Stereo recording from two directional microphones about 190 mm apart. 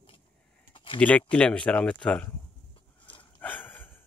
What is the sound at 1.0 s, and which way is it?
Speech, 5° left (ahead or behind).